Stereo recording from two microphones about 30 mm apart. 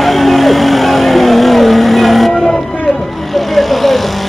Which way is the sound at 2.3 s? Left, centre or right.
Centre.